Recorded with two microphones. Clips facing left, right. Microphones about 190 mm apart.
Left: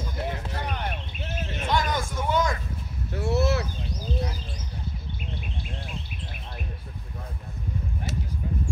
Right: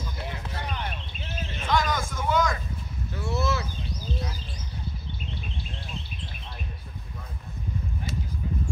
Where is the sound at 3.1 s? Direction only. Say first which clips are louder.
Left 4 dB; 70° left (ahead or behind).